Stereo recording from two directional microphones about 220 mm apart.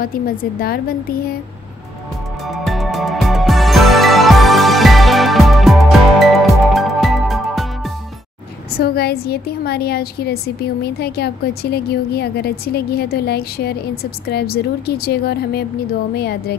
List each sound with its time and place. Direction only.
0.0 s a woman's voice: 40° left (ahead or behind)
2.4 s music: centre (ahead or behind)
8.7 s a woman's voice: 45° left (ahead or behind)